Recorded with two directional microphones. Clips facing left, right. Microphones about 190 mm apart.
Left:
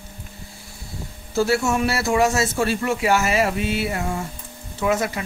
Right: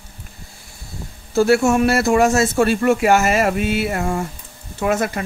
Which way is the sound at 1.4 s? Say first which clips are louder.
Right 6 dB; 50° right (ahead or behind).